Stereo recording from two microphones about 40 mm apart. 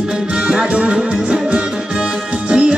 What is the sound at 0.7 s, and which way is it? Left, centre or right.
Music, right.